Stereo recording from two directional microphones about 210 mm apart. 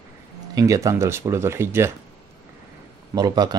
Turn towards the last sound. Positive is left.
turn(degrees=-20)  # may be behind; listen again after turning